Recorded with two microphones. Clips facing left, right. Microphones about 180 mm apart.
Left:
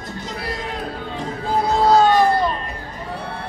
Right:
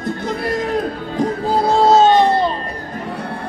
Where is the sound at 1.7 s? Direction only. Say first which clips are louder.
Right 3 dB; 25° right (ahead or behind).